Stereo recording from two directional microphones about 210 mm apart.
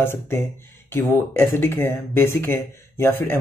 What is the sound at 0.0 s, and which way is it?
Speech, 10° left (ahead or behind).